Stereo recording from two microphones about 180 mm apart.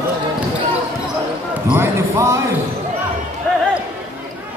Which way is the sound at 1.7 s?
15° right (ahead or behind).